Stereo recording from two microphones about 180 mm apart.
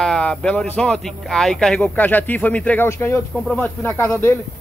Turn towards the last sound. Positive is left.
turn(degrees=15)  # may be behind; listen again after turning